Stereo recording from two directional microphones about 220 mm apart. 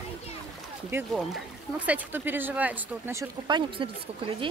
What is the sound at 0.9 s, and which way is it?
Speech, 10° right (ahead or behind).